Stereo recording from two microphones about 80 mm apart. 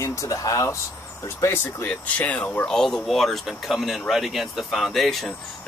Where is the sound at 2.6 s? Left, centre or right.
Centre.